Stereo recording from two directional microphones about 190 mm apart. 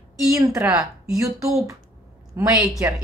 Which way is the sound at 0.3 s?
15° right (ahead or behind).